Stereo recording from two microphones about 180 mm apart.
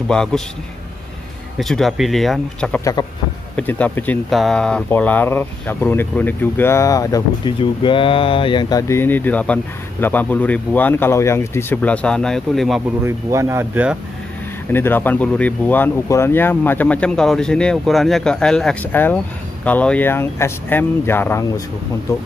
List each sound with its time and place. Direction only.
0.1 s speech: 5° left (ahead or behind)
1.6 s speech: centre (ahead or behind)
2.8 s speech: 20° left (ahead or behind)
3.5 s speech: 10° left (ahead or behind)
13.0 s speech: 15° right (ahead or behind)
14.7 s speech: 10° left (ahead or behind)